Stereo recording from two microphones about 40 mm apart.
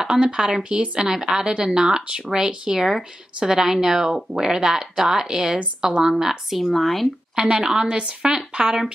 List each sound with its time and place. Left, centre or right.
0.0 s speech: centre
6.7 s speech: centre
7.3 s speech: centre